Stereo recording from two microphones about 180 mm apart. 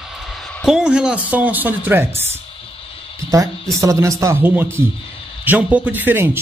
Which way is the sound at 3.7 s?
15° right (ahead or behind).